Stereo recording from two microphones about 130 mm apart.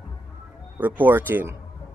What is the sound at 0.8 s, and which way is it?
Speech, 15° right (ahead or behind).